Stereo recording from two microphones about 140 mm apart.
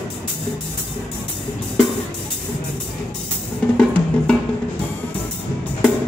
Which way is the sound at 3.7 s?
5° left (ahead or behind).